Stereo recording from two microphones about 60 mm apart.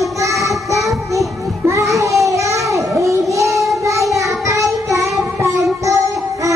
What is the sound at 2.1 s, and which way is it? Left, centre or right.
Child singing, right.